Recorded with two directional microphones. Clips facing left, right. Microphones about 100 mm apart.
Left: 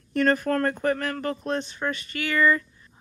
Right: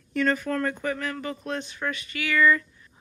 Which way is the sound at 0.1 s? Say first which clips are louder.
Left 3 dB; 50° left (ahead or behind).